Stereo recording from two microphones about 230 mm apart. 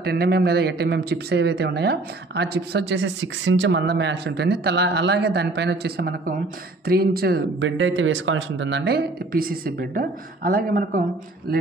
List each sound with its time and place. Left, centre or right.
0.0 s speech: right